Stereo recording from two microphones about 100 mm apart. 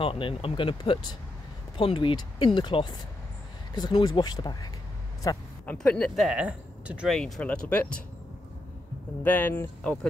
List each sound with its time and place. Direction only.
0.0 s speech: 65° left (ahead or behind)
4.0 s speech: 45° left (ahead or behind)
5.7 s speech: 10° left (ahead or behind)
6.2 s speech: 10° right (ahead or behind)
7.1 s speech: 5° left (ahead or behind)
7.4 s speech: 15° left (ahead or behind)
9.2 s speech: 20° left (ahead or behind)